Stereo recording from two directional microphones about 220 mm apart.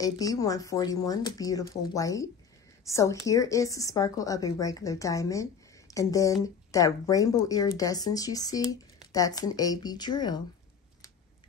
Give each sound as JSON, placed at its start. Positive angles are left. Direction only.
{"t": 0.0, "sound": "a woman's voice", "side_deg": 15}